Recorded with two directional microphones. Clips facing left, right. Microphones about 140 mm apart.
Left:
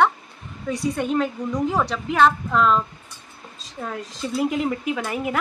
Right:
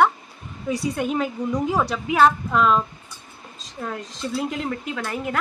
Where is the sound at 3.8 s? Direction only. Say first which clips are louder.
Even; centre (ahead or behind).